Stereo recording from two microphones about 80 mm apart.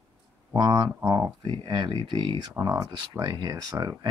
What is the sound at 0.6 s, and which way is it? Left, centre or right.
Speech, right.